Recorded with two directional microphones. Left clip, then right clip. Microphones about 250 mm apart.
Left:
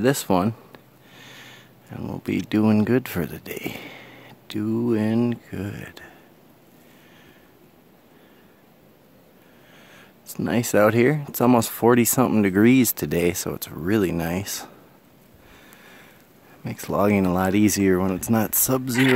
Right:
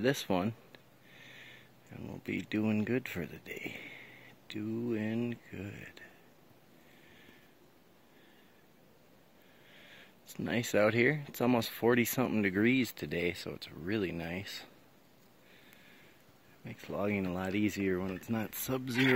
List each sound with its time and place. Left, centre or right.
0.0 s speech: centre
9.8 s speech: centre; by 14.7 s left
16.6 s speech: left; by 19.1 s centre